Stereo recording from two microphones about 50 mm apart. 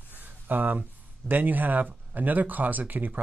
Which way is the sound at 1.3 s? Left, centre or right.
Right.